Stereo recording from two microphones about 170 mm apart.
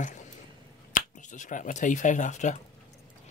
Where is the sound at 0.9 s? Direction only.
45° left (ahead or behind).